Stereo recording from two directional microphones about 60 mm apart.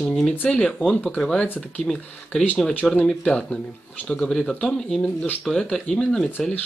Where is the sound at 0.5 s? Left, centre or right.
Centre.